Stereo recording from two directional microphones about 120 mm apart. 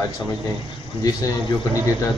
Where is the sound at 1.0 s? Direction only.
30° left (ahead or behind).